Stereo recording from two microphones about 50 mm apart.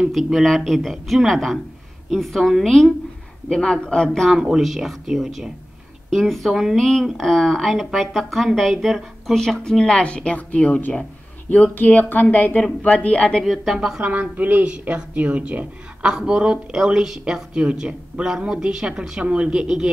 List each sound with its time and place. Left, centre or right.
0.1 s a woman's voice: centre
3.4 s speech: centre
4.4 s speech: centre
6.0 s a woman's voice: centre
6.8 s a woman's voice: centre; by 13.4 s left
13.4 s speech: centre
14.0 s a woman's voice: right; by 19.9 s centre